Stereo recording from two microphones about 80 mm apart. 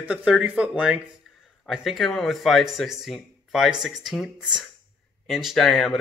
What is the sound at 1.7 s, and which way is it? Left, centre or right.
Speech, centre.